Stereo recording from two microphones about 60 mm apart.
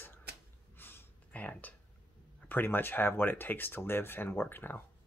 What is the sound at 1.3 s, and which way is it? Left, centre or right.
Speech, left.